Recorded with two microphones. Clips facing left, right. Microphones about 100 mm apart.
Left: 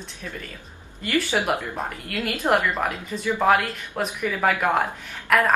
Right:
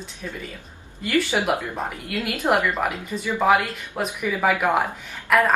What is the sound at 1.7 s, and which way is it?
A woman's voice, centre (ahead or behind).